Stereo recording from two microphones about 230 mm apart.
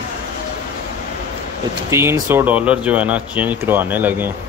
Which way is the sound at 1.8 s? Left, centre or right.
Centre.